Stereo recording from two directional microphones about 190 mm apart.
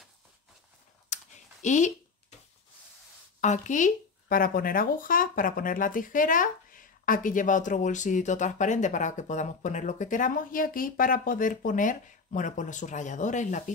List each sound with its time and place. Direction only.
1.1 s computer keyboard: 40° left (ahead or behind)
3.3 s speech: 40° left (ahead or behind)